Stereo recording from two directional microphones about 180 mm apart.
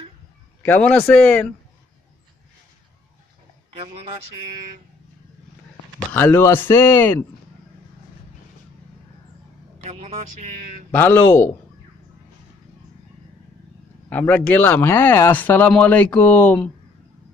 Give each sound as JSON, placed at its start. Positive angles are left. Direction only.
{"t": 0.6, "sound": "a man's voice", "side_deg": 10}
{"t": 6.1, "sound": "speech", "side_deg": 10}
{"t": 9.8, "sound": "a man's voice", "side_deg": -35}
{"t": 10.9, "sound": "speech", "side_deg": 10}
{"t": 14.0, "sound": "speech", "side_deg": 10}